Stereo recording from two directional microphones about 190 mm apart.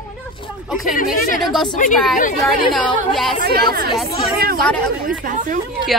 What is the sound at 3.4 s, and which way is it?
Speech, 55° right (ahead or behind).